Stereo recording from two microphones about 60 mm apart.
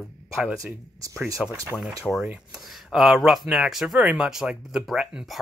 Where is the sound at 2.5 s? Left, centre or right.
Centre.